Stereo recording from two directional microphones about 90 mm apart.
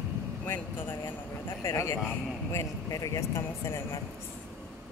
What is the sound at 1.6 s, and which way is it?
Speech, 30° left (ahead or behind).